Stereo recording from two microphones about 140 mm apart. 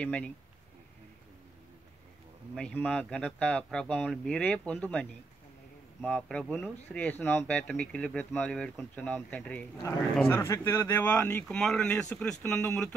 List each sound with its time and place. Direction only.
0.0 s speech: 10° left (ahead or behind)
2.5 s speech: 10° left (ahead or behind)
6.0 s speech: 5° left (ahead or behind)